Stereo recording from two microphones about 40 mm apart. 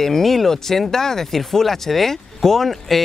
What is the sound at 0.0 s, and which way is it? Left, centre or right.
Speech, centre.